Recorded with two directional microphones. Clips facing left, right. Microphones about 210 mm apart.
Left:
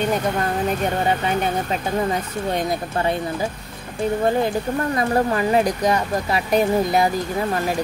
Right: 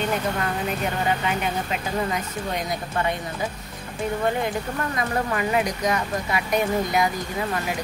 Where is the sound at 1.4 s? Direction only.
35° left (ahead or behind).